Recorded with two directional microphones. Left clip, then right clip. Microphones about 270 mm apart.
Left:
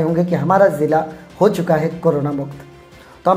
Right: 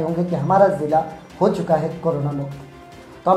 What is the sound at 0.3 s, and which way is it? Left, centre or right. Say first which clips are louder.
Speech: left 1 dB; left.